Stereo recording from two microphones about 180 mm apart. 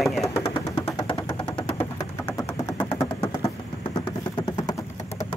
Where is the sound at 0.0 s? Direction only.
Centre (ahead or behind).